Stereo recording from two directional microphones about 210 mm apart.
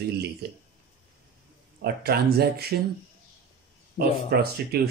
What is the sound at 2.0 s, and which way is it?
Speech, 50° right (ahead or behind).